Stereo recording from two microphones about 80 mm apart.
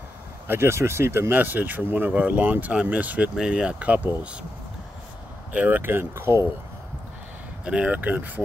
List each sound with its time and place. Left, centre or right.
0.5 s speech: right; by 4.5 s centre
5.5 s speech: right
7.6 s speech: centre